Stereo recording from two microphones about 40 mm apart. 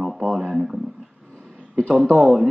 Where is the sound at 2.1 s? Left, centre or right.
Centre.